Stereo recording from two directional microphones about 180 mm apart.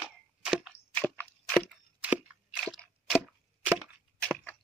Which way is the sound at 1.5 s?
5° right (ahead or behind).